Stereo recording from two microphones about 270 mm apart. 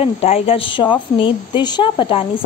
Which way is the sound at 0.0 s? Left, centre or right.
Left.